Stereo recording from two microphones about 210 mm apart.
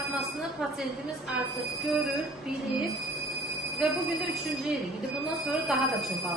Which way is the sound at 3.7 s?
Centre (ahead or behind).